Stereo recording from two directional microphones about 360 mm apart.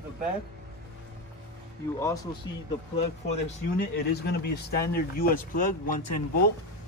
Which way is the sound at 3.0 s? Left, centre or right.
Left.